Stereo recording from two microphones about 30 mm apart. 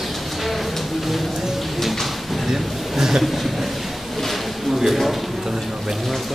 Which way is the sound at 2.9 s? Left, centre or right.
Centre.